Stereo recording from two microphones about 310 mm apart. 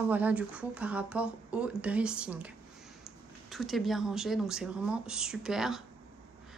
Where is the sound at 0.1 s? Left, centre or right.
Centre.